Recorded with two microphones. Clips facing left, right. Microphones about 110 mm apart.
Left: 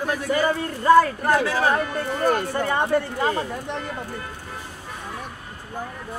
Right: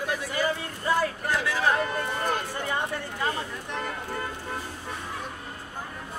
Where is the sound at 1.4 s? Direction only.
45° left (ahead or behind).